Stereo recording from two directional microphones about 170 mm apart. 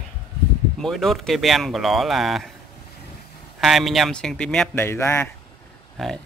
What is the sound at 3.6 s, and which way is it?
Speech, centre (ahead or behind).